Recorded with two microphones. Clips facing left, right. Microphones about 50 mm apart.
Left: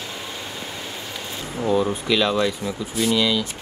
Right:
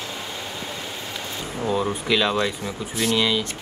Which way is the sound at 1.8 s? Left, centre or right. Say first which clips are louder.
Left 1 dB; right.